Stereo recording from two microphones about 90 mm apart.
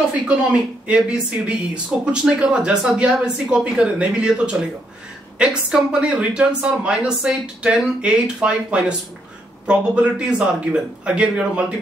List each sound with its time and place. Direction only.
0.5 s speech: 10° right (ahead or behind)